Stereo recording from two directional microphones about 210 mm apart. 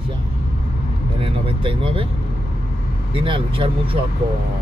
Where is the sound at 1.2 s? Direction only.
25° right (ahead or behind).